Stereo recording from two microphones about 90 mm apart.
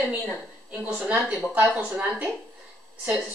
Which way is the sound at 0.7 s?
15° right (ahead or behind).